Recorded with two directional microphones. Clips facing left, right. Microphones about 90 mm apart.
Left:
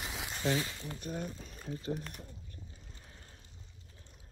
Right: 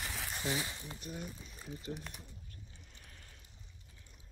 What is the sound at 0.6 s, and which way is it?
Speech, 15° right (ahead or behind).